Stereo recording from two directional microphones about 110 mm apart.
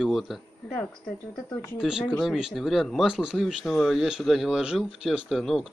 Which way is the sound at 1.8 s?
5° right (ahead or behind).